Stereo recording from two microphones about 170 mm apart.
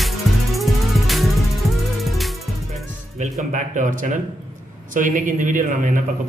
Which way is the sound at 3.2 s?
45° right (ahead or behind).